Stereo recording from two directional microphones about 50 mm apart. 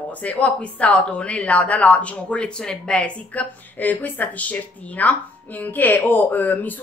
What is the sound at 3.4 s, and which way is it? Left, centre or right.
Speech, left.